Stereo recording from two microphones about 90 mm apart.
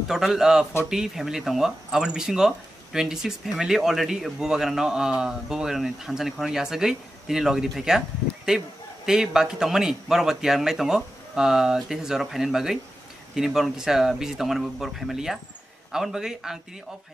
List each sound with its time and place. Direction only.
0.1 s speech: 5° right (ahead or behind)